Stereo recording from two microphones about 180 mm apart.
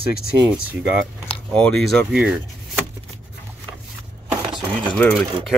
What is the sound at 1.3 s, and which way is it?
Speech, 5° left (ahead or behind).